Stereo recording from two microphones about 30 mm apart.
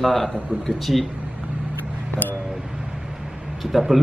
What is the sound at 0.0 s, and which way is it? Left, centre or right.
A man's voice, centre.